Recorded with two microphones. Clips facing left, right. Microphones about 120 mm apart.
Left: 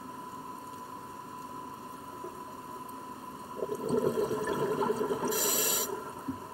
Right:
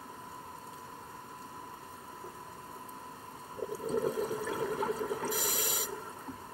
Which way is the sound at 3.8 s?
25° left (ahead or behind).